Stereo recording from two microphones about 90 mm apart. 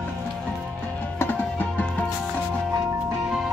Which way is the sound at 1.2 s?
20° left (ahead or behind).